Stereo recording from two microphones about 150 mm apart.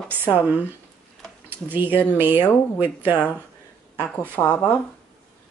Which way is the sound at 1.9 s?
10° left (ahead or behind).